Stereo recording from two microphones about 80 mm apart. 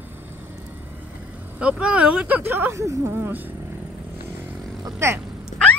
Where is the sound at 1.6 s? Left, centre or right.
Centre.